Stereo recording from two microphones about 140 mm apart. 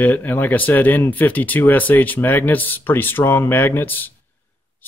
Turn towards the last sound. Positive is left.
turn(degrees=15)  # may be behind; listen again after turning